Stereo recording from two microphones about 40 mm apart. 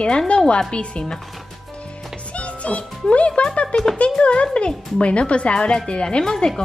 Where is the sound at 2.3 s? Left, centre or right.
Left.